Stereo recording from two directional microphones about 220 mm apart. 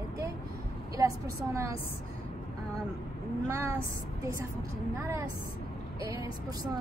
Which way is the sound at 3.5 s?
10° right (ahead or behind).